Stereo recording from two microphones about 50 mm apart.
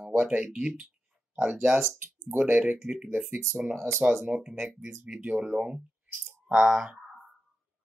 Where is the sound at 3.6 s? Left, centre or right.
Centre.